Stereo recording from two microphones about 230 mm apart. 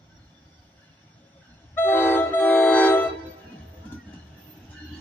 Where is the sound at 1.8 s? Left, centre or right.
Centre.